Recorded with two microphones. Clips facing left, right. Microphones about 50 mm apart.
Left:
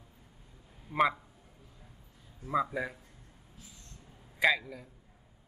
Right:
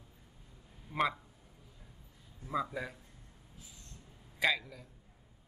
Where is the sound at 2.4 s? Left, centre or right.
Centre.